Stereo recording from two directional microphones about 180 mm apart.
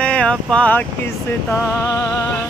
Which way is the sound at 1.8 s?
15° left (ahead or behind).